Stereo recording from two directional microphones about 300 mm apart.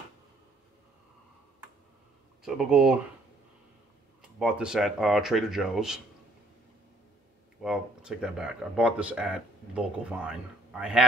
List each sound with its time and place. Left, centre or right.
2.4 s speech: centre
4.2 s speech: centre
7.6 s speech: centre